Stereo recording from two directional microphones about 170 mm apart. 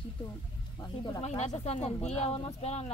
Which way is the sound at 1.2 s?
40° left (ahead or behind).